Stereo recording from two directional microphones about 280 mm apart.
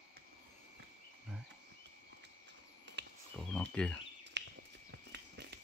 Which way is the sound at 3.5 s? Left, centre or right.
Centre.